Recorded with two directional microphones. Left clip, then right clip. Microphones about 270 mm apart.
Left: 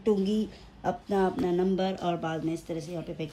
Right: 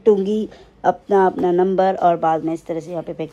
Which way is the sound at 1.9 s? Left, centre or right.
Right.